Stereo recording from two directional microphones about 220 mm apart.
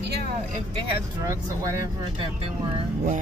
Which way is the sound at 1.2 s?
15° right (ahead or behind).